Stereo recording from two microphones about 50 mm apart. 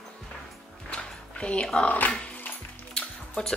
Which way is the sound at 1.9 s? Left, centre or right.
Left.